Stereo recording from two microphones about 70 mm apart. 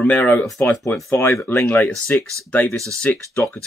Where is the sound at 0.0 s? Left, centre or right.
Left.